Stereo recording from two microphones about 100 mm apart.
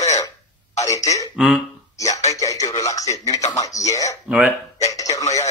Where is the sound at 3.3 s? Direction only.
35° left (ahead or behind).